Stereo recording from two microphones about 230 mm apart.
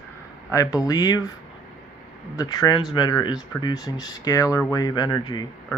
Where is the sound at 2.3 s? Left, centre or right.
Centre.